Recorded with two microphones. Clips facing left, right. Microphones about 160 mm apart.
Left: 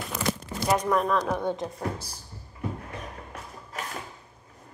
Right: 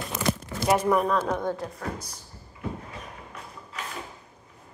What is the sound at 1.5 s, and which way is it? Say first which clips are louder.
Speech: left 1 dB; 25° left (ahead or behind).